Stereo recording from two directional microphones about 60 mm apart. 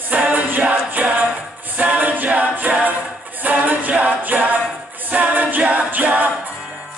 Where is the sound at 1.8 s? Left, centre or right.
Right.